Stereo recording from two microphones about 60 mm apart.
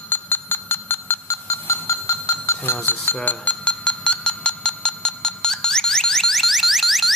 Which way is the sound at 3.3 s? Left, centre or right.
Left.